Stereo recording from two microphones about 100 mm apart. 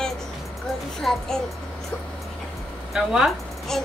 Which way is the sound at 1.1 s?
5° left (ahead or behind).